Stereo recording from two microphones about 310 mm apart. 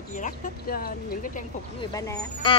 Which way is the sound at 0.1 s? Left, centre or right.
Left.